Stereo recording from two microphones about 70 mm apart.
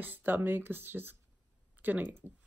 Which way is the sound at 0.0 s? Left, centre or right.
Right.